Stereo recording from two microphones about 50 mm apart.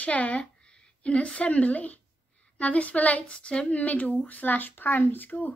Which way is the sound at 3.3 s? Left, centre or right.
Centre.